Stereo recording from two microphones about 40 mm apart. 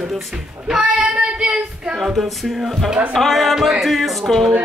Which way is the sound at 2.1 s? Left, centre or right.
Centre.